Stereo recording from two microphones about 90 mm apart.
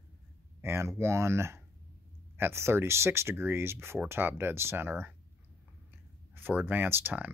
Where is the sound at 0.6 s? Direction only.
30° right (ahead or behind).